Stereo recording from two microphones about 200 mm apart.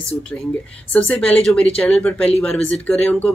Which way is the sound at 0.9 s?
5° left (ahead or behind).